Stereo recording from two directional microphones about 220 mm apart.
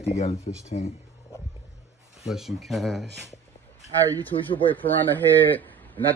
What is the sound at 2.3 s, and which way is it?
Speech, centre (ahead or behind).